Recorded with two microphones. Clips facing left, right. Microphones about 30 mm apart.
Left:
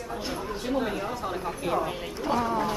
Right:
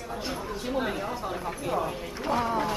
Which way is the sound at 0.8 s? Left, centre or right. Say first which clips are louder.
Right 1 dB; centre.